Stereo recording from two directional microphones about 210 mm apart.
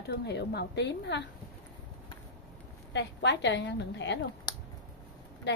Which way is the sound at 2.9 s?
55° left (ahead or behind).